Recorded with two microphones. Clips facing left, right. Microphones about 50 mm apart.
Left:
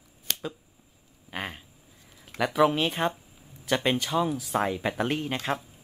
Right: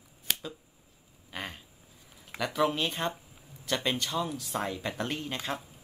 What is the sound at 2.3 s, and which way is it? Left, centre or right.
Speech, centre.